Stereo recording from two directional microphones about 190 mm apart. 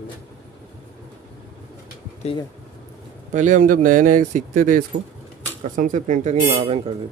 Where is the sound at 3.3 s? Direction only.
40° right (ahead or behind).